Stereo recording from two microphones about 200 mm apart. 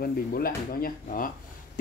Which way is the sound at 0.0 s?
50° left (ahead or behind).